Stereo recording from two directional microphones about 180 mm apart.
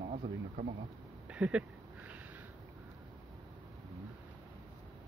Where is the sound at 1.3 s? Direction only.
5° right (ahead or behind).